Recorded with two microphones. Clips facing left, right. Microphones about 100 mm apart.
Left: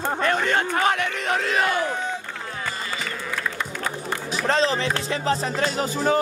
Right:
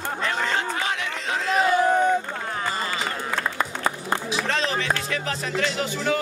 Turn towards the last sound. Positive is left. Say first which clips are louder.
# left 3 dB
turn(degrees=35)  # may be behind; listen again after turning